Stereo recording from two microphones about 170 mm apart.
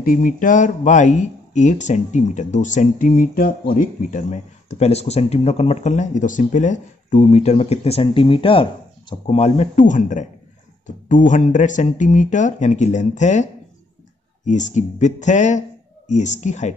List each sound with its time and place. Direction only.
0.0 s speech: 50° left (ahead or behind)